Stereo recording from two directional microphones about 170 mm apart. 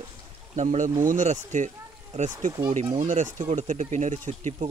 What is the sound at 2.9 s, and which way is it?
Speech, 45° right (ahead or behind).